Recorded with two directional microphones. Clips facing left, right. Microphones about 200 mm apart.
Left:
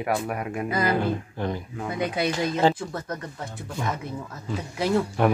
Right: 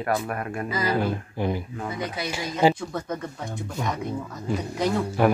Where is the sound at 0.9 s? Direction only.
10° right (ahead or behind).